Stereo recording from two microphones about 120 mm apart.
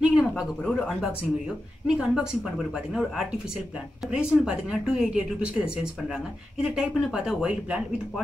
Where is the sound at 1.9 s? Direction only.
5° right (ahead or behind).